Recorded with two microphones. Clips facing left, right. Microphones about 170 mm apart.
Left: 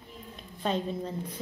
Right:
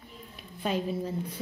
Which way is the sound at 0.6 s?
10° right (ahead or behind).